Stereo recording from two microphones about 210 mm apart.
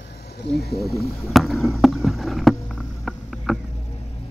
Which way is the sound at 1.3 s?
Centre (ahead or behind).